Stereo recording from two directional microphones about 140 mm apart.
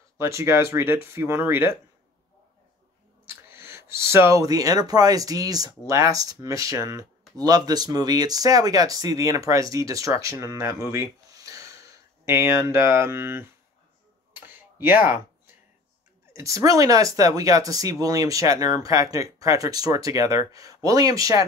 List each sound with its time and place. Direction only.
0.2 s speech: 20° right (ahead or behind)
3.4 s speech: 15° right (ahead or behind)
14.3 s a sound: 15° right (ahead or behind)
16.3 s speech: 25° right (ahead or behind)